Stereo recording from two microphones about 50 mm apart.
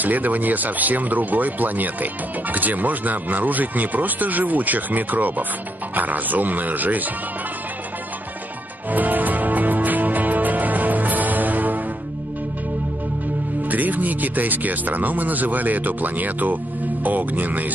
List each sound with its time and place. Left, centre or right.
0.0 s speech: right
8.9 s music: right
13.7 s speech: right